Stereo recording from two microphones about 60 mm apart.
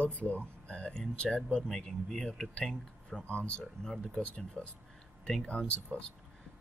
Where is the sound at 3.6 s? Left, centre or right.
Centre.